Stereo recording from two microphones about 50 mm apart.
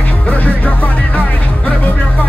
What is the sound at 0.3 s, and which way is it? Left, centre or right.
Music, left.